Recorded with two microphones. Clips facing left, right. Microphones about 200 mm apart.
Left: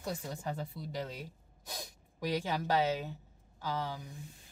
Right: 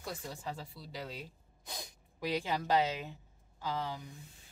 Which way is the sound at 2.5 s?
15° left (ahead or behind).